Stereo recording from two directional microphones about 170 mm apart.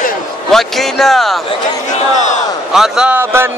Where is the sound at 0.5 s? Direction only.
Centre (ahead or behind).